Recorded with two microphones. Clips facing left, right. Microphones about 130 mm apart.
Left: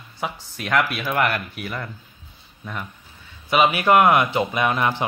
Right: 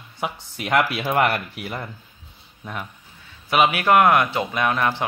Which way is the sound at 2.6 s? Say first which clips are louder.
Even; 5° right (ahead or behind).